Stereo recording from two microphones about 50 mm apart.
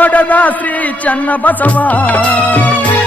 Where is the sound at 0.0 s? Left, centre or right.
Left.